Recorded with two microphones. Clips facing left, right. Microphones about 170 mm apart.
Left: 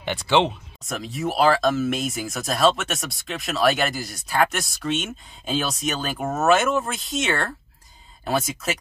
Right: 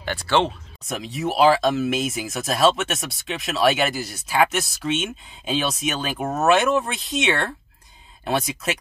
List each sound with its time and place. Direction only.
0.3 s speech: 15° left (ahead or behind)
0.8 s speech: centre (ahead or behind)